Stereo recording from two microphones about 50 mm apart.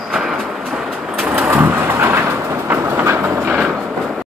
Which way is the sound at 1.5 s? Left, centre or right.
Right.